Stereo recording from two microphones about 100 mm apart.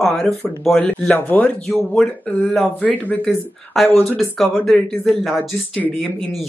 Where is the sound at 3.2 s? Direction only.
Centre (ahead or behind).